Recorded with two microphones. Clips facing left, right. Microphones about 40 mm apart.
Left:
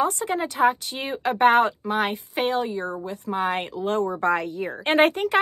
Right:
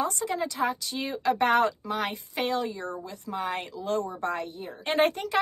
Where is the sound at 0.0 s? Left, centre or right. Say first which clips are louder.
Left 5 dB; left.